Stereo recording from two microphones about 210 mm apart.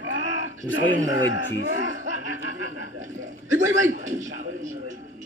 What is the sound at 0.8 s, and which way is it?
Speech, 60° left (ahead or behind).